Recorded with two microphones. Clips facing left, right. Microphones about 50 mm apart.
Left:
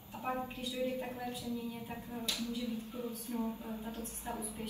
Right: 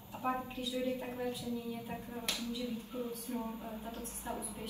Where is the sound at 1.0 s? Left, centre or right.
Right.